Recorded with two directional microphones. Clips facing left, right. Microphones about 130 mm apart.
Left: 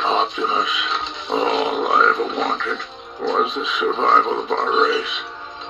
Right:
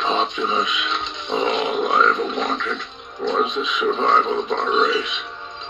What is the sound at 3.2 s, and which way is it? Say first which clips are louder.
A man's voice: left 1 dB; 35° left (ahead or behind).